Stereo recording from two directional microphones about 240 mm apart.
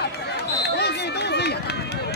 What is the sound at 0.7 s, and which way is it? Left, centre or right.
Run, left.